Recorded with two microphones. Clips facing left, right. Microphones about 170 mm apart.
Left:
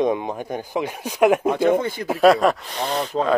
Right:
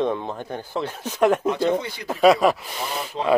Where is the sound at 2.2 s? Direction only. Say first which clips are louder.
Left 1 dB; centre (ahead or behind).